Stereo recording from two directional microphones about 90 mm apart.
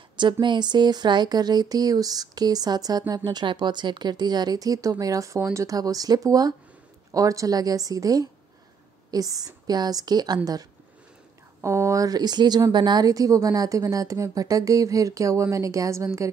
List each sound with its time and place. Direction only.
0.2 s speech: 60° right (ahead or behind)
3.3 s speech: 55° right (ahead or behind)
11.6 s speech: 30° right (ahead or behind)